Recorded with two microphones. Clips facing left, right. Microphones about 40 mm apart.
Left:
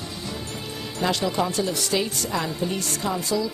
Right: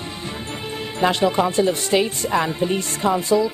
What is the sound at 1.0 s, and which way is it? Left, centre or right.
A woman's voice, right.